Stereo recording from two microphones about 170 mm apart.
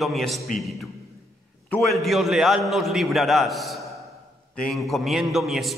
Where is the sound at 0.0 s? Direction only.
Centre (ahead or behind).